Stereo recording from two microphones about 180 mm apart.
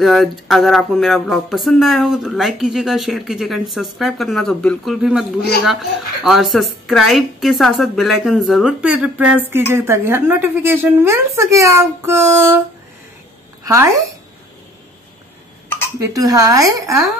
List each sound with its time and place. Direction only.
0.0 s a sound: centre (ahead or behind)
5.6 s speech: centre (ahead or behind)
16.0 s a woman's voice: 20° right (ahead or behind)